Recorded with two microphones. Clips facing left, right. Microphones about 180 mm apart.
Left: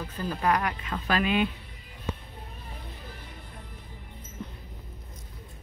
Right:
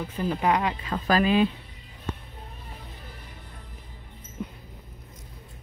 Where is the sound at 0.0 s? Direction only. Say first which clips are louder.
Right 3 dB; 20° right (ahead or behind).